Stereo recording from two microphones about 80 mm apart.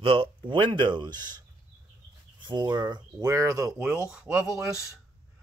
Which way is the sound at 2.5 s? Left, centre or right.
Right.